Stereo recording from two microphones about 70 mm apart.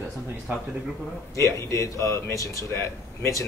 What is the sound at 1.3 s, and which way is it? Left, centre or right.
Speech, left.